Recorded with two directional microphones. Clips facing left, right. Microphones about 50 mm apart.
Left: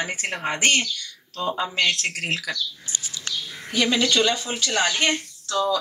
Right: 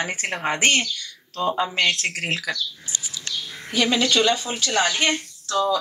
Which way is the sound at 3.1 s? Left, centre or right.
Centre.